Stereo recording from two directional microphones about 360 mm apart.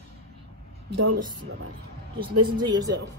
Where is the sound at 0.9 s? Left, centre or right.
Right.